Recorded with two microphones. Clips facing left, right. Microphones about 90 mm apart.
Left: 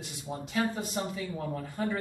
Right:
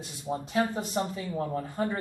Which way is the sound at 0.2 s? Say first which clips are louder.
Right 3 dB; 30° right (ahead or behind).